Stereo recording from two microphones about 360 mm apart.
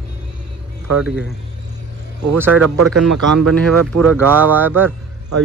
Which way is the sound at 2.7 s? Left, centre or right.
Right.